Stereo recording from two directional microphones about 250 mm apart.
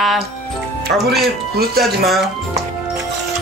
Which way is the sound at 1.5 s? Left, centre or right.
Right.